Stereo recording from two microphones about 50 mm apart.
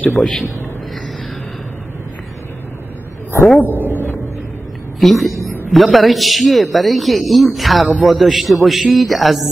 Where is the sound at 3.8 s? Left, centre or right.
Left.